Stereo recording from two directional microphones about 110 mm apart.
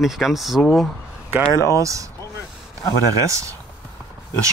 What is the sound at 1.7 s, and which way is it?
Speech, 30° right (ahead or behind).